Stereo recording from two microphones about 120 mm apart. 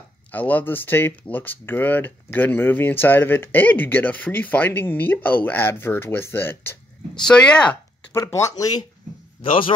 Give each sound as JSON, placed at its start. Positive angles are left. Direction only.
{"t": 0.3, "sound": "speech", "side_deg": 15}
{"t": 7.2, "sound": "speech", "side_deg": 5}
{"t": 8.2, "sound": "speech", "side_deg": 25}
{"t": 9.4, "sound": "a man's voice", "side_deg": 45}